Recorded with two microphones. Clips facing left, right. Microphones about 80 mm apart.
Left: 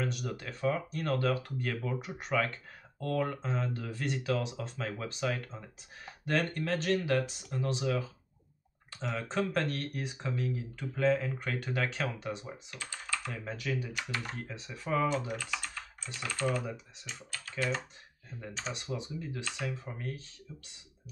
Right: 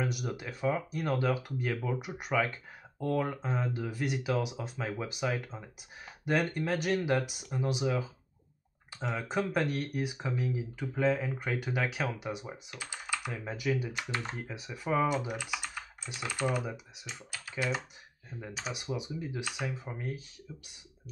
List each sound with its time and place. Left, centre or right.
0.0 s speech: centre
9.1 s speech: centre
13.9 s speech: right